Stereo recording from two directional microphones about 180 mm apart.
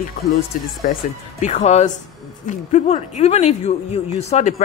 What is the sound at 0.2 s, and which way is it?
Speech, 60° left (ahead or behind).